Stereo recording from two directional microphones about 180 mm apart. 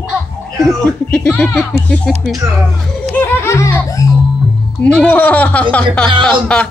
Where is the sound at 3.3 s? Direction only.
15° left (ahead or behind).